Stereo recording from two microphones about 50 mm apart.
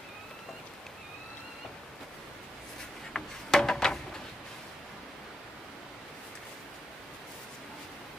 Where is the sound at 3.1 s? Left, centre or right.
Centre.